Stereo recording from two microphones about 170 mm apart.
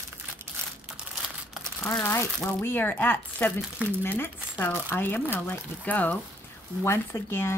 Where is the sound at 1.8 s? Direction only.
15° left (ahead or behind).